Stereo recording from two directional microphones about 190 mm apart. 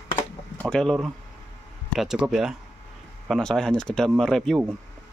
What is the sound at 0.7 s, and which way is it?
Speech, centre (ahead or behind).